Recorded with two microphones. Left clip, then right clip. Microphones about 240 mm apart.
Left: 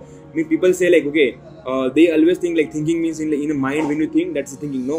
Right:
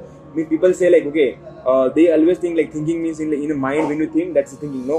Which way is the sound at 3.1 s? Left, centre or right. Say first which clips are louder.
Even; left.